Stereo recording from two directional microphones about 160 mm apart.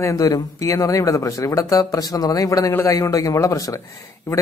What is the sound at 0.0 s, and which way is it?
Speech, 20° left (ahead or behind).